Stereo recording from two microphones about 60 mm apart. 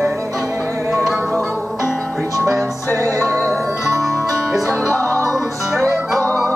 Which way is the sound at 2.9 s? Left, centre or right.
Right.